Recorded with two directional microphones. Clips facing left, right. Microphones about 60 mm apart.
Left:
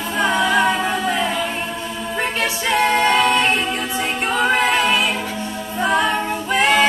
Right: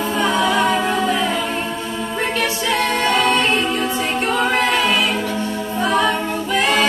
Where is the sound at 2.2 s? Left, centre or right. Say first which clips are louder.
Even; left.